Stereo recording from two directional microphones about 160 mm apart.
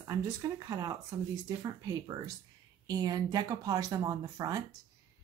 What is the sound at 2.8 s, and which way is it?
Speech, 25° right (ahead or behind).